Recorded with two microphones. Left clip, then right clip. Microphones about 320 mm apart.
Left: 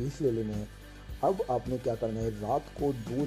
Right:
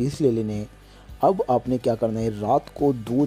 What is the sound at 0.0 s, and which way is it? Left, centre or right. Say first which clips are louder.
Speech: right 8 dB; right.